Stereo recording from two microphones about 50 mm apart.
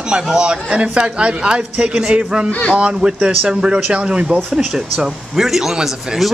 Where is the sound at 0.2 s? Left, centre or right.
Centre.